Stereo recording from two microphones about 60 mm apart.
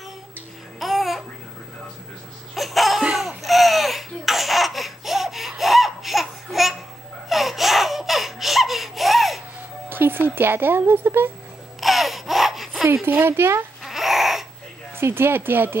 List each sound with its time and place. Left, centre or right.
0.7 s babbling: centre
2.5 s laughter: centre
9.8 s speech: right
11.8 s baby cry: centre
13.0 s speech: right
13.8 s baby cry: centre
15.0 s speech: right